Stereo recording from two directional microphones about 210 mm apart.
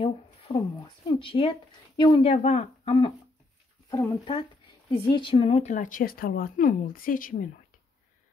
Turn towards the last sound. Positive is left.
turn(degrees=40)  # may be behind; listen again after turning